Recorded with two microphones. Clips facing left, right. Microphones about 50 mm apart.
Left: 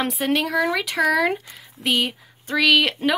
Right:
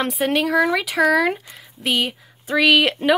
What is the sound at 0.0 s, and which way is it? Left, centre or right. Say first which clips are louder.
Speech: right 2 dB; centre.